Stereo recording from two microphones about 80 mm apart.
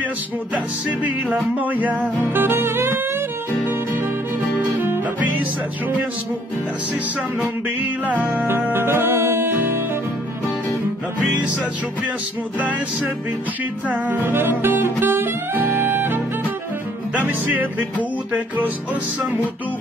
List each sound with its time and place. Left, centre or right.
1.3 s music: centre
4.6 s music: right
7.8 s music: centre
12.5 s music: centre
17.3 s music: centre